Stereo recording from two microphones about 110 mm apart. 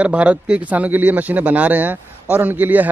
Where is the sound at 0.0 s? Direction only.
10° right (ahead or behind).